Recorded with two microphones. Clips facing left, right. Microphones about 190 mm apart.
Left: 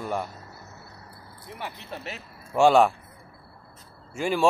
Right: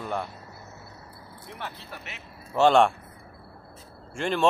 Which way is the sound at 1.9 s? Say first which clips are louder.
Left 5 dB; 25° left (ahead or behind).